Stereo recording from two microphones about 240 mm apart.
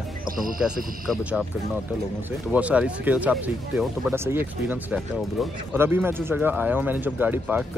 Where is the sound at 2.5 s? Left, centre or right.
Centre.